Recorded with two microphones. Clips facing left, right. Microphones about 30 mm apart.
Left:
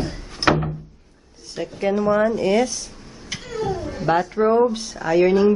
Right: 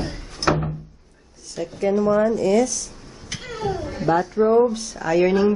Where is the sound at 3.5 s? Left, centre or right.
Centre.